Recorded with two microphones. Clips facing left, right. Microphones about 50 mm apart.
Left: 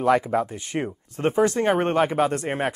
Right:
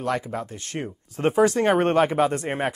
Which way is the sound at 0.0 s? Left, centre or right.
Centre.